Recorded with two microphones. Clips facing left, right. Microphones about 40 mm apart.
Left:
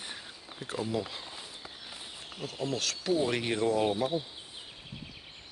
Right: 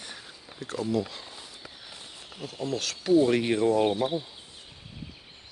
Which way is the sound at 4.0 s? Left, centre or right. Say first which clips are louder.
Right 2 dB; centre.